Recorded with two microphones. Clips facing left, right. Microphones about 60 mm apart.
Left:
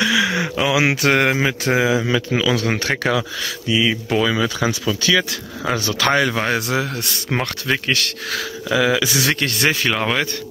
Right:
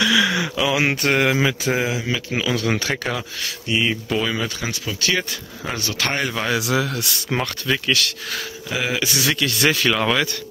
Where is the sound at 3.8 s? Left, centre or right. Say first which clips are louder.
Left 4 dB; left.